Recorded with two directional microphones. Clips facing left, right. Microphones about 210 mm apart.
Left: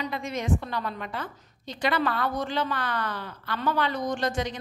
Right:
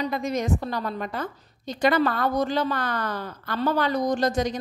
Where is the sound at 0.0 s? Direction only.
40° right (ahead or behind).